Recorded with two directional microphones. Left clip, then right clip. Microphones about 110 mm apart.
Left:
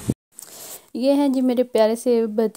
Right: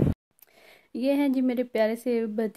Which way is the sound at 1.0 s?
50° left (ahead or behind).